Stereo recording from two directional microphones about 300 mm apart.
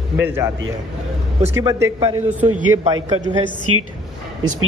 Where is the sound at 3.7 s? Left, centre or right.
Right.